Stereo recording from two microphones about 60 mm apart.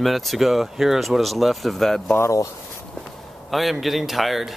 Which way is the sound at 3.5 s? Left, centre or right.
Centre.